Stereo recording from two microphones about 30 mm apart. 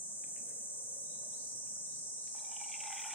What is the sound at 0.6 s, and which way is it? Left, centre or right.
Cricket, left.